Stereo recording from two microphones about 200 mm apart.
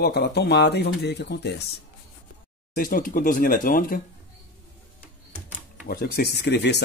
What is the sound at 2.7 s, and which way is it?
Speech, 45° left (ahead or behind).